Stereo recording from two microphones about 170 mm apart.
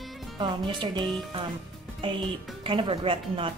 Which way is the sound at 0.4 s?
25° right (ahead or behind).